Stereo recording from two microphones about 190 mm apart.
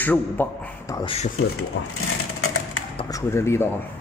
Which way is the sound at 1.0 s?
35° left (ahead or behind).